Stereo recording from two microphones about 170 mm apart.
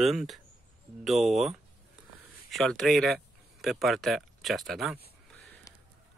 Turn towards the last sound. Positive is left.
turn(degrees=20)  # may be behind; listen again after turning